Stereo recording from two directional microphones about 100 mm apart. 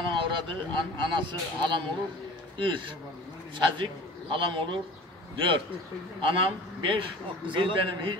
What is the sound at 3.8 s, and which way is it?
Speech, 60° right (ahead or behind).